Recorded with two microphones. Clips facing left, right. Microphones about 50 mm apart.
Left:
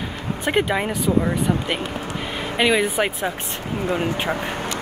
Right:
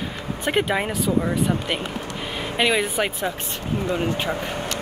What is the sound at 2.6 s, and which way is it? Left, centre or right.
Speech, centre.